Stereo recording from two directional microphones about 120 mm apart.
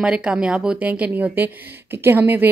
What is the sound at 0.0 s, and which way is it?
Speech, 10° right (ahead or behind).